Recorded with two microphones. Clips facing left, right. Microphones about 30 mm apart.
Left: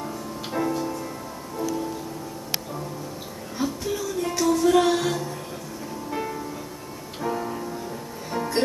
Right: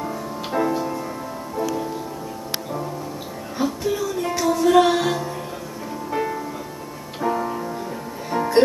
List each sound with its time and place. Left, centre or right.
0.0 s music: centre
3.5 s music: centre